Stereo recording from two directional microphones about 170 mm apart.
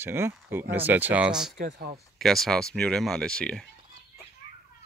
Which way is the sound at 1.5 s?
65° right (ahead or behind).